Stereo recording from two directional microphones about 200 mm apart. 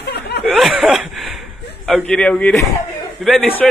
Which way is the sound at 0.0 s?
55° left (ahead or behind).